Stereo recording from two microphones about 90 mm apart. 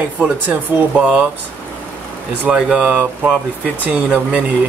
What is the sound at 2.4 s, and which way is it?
Speech, 10° right (ahead or behind).